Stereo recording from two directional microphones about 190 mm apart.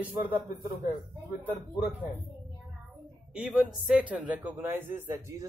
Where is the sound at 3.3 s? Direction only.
5° right (ahead or behind).